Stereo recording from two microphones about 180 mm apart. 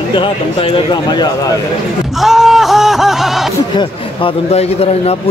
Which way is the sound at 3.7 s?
30° left (ahead or behind).